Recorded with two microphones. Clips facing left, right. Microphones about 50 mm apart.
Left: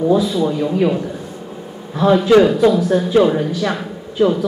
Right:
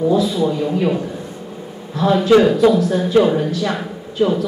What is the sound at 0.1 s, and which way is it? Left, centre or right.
Speech, centre.